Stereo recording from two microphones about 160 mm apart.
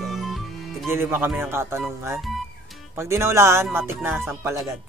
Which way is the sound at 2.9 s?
15° right (ahead or behind).